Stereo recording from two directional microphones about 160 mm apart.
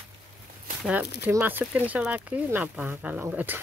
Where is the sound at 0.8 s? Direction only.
10° right (ahead or behind).